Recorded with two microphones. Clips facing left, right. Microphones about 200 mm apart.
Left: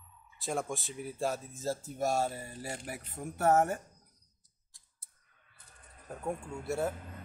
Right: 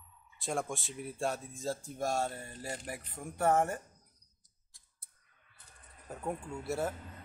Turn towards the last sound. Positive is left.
turn(degrees=0)  # may be behind; listen again after turning